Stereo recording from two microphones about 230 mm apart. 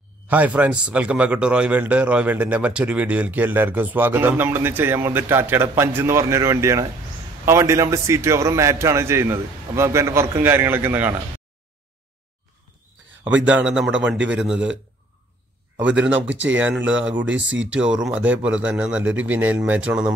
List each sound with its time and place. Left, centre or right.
0.3 s a man's voice: centre
13.5 s speech: centre
15.8 s a man's voice: centre
17.3 s speech: right
17.7 s a man's voice: centre